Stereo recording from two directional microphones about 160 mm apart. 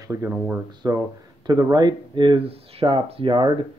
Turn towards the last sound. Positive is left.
turn(degrees=-30)  # may be behind; listen again after turning